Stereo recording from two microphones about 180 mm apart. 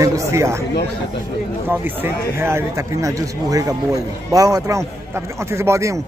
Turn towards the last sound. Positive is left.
turn(degrees=-15)  # may be behind; listen again after turning